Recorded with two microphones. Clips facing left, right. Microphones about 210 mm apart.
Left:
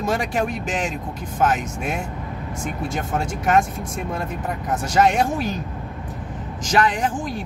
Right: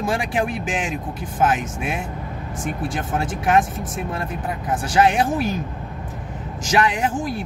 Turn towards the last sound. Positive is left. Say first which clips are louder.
# right 1 dB
turn(degrees=-5)  # may be behind; listen again after turning